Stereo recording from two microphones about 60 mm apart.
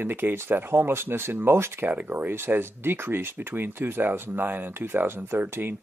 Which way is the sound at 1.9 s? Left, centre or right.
Right.